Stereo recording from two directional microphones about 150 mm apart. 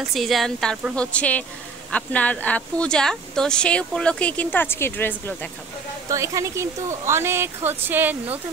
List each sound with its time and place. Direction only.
0.1 s a woman's voice: centre (ahead or behind)
6.0 s speech: 20° right (ahead or behind)